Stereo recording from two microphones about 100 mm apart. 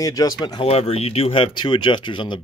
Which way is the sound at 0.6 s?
85° left.